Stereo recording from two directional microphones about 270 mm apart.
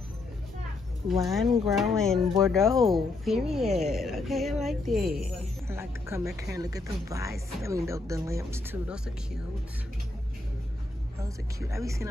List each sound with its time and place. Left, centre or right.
1.0 s speech: centre
5.0 s speech: right
5.7 s speech: centre
11.1 s speech: centre